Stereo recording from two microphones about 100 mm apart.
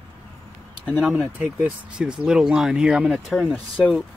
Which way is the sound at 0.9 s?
Centre (ahead or behind).